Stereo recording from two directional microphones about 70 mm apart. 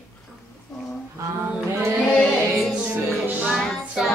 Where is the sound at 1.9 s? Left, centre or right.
Centre.